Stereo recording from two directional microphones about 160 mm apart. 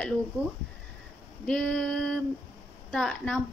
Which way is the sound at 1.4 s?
5° left (ahead or behind).